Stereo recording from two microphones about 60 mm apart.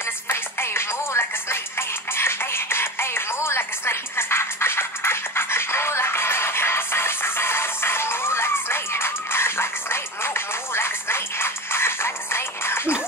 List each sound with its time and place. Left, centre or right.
0.0 s music: left